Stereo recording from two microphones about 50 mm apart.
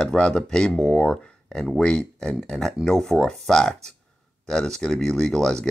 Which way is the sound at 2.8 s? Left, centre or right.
Centre.